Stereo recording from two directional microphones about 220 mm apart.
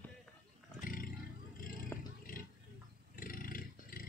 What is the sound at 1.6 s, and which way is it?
Vehicle, 40° left (ahead or behind).